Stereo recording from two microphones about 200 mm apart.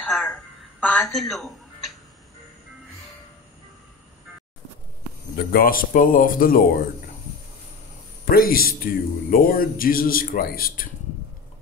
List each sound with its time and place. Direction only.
0.0 s music: 5° left (ahead or behind)
0.7 s a sound: 5° left (ahead or behind)
5.5 s speech: 45° left (ahead or behind)
8.3 s speech: 50° left (ahead or behind)